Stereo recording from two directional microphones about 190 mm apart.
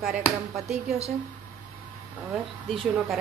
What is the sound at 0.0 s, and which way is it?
Speech, 5° right (ahead or behind).